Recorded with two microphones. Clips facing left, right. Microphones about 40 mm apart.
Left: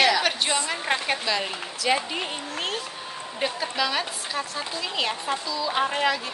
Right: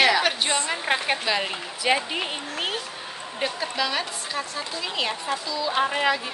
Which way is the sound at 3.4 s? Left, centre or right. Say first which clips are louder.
Even; centre.